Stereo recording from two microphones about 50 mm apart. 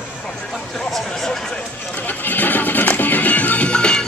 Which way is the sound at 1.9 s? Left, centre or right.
Left.